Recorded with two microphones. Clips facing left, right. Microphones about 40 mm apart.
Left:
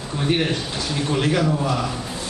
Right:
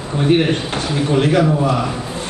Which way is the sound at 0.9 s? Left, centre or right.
Centre.